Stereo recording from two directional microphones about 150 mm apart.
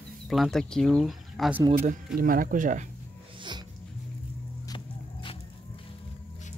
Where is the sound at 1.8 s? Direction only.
65° right (ahead or behind).